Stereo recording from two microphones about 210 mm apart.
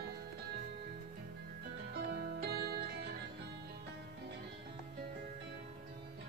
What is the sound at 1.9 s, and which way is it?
Music, 45° right (ahead or behind).